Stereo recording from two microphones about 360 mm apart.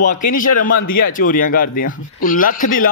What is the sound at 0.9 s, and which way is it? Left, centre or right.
Speech, left.